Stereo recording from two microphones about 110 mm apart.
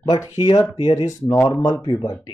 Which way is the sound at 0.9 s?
35° left (ahead or behind).